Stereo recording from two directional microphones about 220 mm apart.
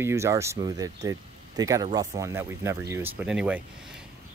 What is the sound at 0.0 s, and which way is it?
Speech, 15° right (ahead or behind).